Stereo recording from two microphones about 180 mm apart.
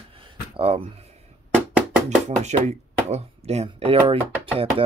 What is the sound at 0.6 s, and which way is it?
Speech, 30° right (ahead or behind).